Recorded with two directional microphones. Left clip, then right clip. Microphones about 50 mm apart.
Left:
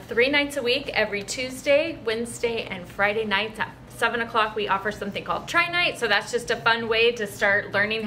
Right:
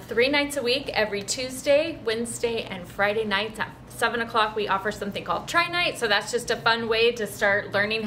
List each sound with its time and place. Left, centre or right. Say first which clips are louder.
0.1 s a woman's voice: left 1 dB; centre